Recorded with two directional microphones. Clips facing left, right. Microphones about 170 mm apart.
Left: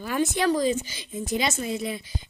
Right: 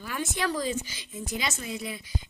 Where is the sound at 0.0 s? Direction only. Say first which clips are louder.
Left 7 dB; 30° left (ahead or behind).